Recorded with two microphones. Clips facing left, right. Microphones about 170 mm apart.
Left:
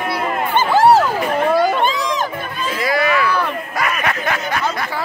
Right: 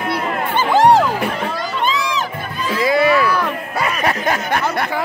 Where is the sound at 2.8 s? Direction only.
25° right (ahead or behind).